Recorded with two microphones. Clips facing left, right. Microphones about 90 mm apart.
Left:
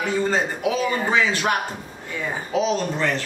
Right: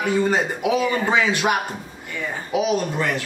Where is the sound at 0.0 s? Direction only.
15° right (ahead or behind).